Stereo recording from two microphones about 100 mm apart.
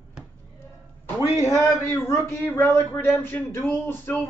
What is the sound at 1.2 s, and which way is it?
A man's voice, 35° left (ahead or behind).